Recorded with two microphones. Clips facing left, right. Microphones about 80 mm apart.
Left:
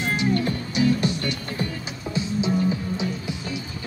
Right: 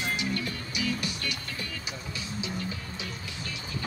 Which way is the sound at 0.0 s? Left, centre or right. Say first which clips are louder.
Left 8 dB; left.